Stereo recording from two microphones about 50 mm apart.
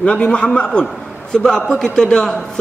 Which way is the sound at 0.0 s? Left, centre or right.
Left.